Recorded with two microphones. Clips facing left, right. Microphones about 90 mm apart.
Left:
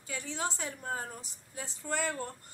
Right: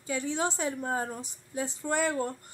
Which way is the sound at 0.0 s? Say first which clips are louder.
Right 7 dB; 20° right (ahead or behind).